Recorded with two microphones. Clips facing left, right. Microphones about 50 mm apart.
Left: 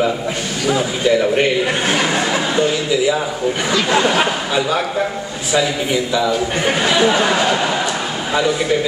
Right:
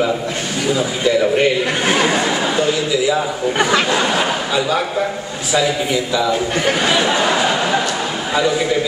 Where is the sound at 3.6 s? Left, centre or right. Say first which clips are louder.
Right 6 dB; right.